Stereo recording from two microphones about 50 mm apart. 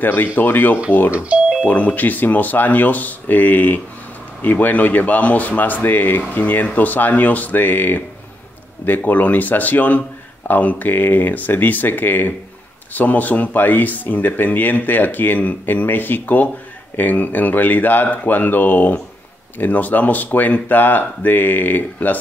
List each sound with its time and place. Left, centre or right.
0.0 s speech: left